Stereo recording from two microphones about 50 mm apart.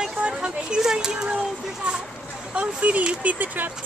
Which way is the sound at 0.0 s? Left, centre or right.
Centre.